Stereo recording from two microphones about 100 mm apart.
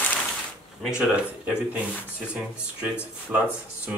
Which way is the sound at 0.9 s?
10° right (ahead or behind).